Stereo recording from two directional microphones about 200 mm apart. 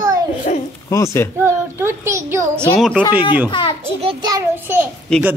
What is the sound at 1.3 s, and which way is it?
Speech, 15° right (ahead or behind).